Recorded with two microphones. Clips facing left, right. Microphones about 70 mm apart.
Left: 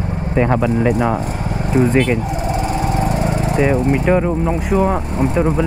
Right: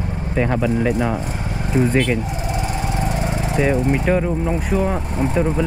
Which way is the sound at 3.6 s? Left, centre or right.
Centre.